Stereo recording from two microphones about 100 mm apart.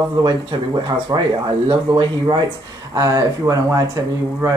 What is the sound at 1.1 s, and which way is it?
Speech, 40° right (ahead or behind).